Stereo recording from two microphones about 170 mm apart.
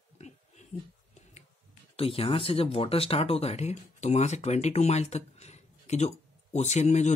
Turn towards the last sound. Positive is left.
turn(degrees=45)  # may be behind; listen again after turning